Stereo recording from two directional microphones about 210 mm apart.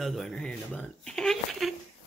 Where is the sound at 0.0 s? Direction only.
Centre (ahead or behind).